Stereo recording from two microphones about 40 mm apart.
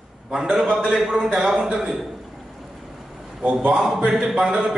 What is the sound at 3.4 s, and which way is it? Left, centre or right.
Speech, right.